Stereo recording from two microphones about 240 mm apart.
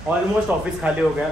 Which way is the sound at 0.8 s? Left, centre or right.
Centre.